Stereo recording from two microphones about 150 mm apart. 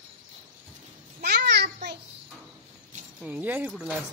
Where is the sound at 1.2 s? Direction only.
90° right.